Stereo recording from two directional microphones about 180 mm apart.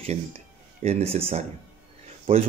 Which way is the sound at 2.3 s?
30° right (ahead or behind).